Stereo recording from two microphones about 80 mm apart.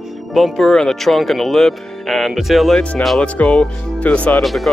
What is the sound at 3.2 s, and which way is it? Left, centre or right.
Speech, centre.